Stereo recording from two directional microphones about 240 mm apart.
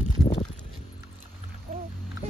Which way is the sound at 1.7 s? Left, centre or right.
Right.